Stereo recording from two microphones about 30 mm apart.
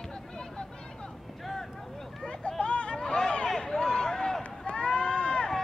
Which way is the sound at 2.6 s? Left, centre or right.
Left.